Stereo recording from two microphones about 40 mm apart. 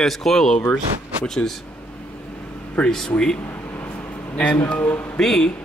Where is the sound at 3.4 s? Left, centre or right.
Left.